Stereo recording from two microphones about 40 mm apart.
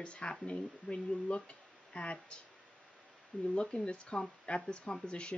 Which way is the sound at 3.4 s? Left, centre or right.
Left.